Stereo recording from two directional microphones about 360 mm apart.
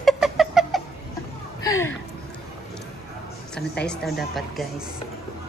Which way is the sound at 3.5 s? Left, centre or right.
Centre.